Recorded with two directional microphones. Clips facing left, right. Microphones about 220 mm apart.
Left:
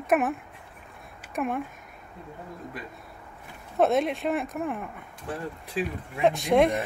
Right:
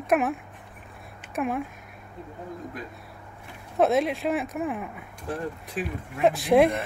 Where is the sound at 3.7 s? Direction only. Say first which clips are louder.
Right 1 dB; centre (ahead or behind).